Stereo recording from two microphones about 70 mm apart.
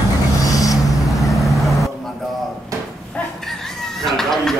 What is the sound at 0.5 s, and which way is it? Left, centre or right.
Vehicle, left.